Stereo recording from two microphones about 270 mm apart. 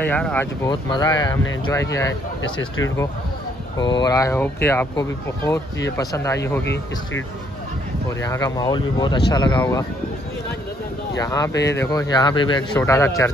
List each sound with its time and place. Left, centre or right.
0.0 s speech: centre
6.6 s speech: left
8.2 s speech: centre
11.1 s speech: centre
11.5 s speech: left
11.8 s speech: centre